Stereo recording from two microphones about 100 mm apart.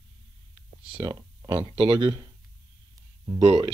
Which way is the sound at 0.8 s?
55° right (ahead or behind).